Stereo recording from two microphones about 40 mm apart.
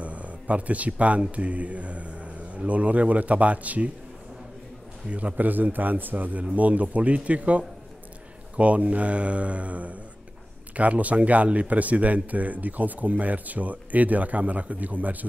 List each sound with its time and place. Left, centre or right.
0.0 s speech: right
5.1 s a man's voice: right